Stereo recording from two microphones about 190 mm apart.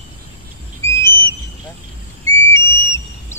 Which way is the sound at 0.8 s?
15° left (ahead or behind).